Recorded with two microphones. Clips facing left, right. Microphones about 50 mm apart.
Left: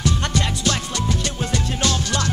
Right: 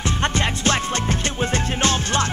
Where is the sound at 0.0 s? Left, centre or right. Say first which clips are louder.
Right 1 dB; right.